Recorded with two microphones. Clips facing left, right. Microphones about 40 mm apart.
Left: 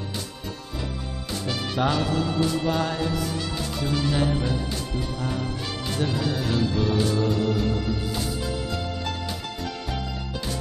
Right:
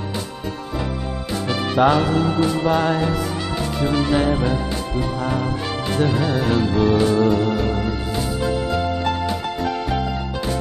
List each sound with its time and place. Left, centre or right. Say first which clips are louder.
1.5 s music: right 8 dB; right